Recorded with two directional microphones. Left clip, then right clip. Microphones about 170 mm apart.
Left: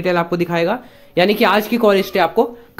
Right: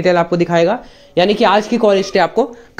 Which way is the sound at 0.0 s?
5° right (ahead or behind).